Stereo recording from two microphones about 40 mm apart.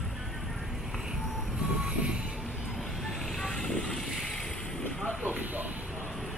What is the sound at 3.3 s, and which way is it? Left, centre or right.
Vehicle, centre.